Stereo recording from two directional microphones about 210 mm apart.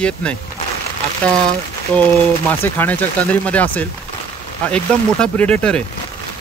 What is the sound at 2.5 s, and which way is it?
Speech, 10° left (ahead or behind).